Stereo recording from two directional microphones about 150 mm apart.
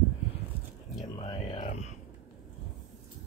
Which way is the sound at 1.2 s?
45° left (ahead or behind).